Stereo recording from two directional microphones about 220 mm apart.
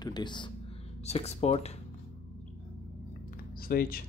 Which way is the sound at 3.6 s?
40° left (ahead or behind).